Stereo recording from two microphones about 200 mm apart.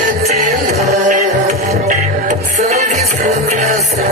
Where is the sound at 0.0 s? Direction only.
40° right (ahead or behind).